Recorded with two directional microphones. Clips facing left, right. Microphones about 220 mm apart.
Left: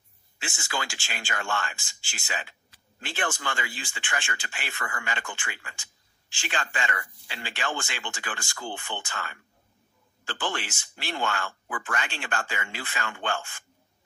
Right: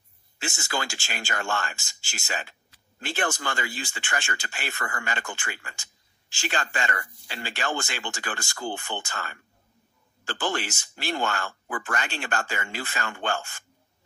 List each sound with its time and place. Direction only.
0.4 s speech: 40° right (ahead or behind)